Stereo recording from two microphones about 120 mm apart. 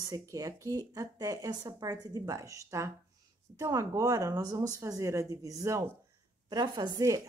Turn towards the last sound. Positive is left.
turn(degrees=-30)  # may be behind; listen again after turning